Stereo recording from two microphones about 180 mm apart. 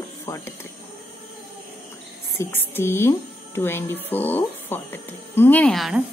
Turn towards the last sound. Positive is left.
turn(degrees=0)  # may be behind; listen again after turning